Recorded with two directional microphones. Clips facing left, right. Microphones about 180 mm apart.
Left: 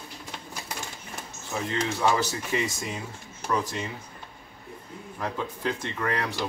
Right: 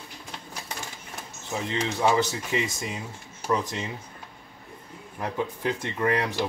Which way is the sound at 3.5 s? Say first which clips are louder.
Right 1 dB; 20° right (ahead or behind).